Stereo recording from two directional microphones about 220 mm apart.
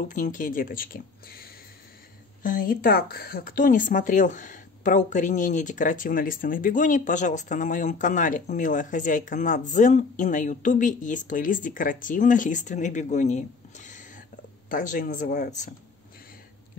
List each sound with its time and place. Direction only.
0.1 s speech: 35° left (ahead or behind)
2.4 s speech: 35° left (ahead or behind)